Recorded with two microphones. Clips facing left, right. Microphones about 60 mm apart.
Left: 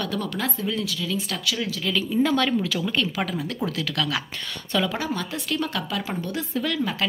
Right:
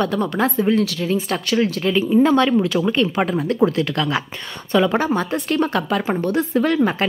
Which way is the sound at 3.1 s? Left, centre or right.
Right.